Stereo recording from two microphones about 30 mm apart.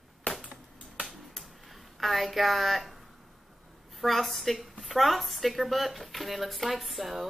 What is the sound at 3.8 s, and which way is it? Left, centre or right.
A woman's voice, centre.